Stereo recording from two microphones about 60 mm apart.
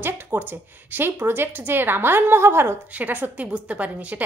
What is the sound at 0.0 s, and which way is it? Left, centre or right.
Speech, right.